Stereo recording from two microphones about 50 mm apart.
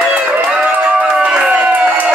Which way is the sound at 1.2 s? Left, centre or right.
Right.